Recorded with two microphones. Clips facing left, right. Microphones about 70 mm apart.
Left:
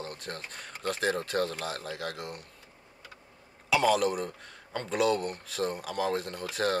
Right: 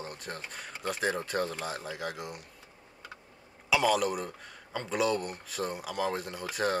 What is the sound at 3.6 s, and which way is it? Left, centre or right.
Speech, centre.